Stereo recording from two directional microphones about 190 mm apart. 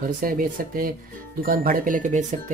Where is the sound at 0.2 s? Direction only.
50° right (ahead or behind).